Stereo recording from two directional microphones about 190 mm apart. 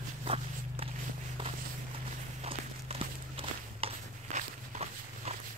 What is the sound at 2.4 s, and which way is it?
Walk, 30° right (ahead or behind).